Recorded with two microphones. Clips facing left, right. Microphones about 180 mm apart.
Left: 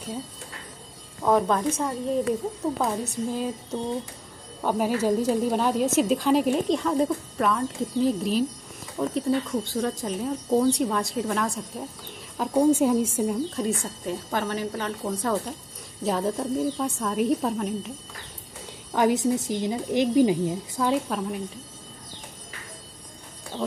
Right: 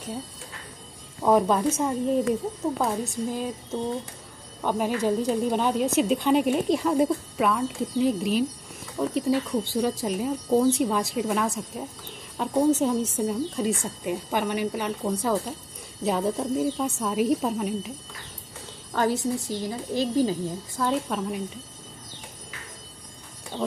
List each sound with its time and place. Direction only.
1.2 s a woman's voice: 10° right (ahead or behind)
12.4 s a woman's voice: 10° left (ahead or behind)
14.0 s speech: 15° right (ahead or behind)
18.9 s a woman's voice: 15° left (ahead or behind)
20.9 s speech: centre (ahead or behind)